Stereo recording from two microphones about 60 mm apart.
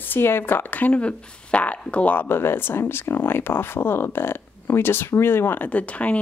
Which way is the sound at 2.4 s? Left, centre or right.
Left.